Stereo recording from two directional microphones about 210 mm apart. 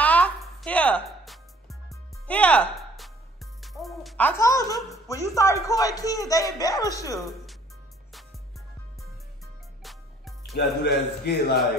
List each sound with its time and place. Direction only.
0.0 s music: 5° left (ahead or behind)
3.6 s music: centre (ahead or behind); by 4.7 s 15° left (ahead or behind)
4.9 s a man's voice: 15° left (ahead or behind)
7.2 s speech: centre (ahead or behind)
9.8 s music: centre (ahead or behind)
10.5 s a man's voice: 50° left (ahead or behind)